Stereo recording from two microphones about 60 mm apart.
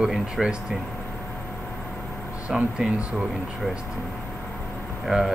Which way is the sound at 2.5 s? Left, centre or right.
Centre.